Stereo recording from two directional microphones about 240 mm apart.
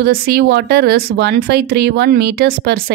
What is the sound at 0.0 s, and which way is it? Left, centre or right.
A woman's voice, right.